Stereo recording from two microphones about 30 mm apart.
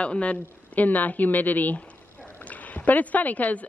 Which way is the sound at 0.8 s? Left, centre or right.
Left.